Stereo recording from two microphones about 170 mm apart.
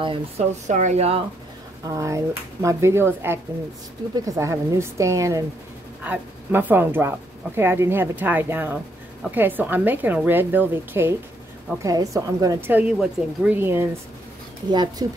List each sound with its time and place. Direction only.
0.0 s speech: 30° right (ahead or behind)
0.7 s speech: 45° right (ahead or behind)
1.9 s speech: 20° right (ahead or behind)
14.7 s speech: 25° right (ahead or behind)